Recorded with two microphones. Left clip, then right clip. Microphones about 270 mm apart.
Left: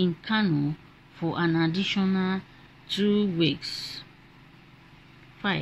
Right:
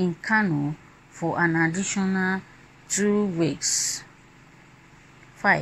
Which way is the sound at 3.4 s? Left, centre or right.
Centre.